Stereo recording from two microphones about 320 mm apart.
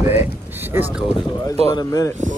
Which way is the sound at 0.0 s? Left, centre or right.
Centre.